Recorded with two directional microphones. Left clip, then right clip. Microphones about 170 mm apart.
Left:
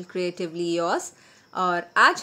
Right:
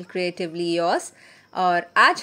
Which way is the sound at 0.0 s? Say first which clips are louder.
Right 2 dB; 10° right (ahead or behind).